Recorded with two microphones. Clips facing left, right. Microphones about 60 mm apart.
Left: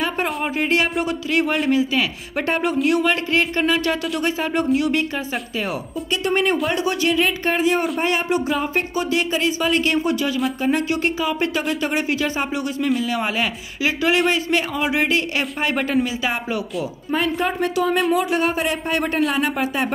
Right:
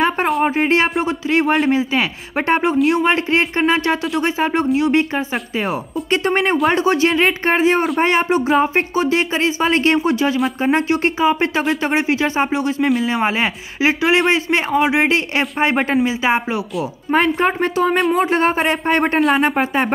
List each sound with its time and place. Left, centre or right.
0.6 s a man's voice: right
17.4 s speech: right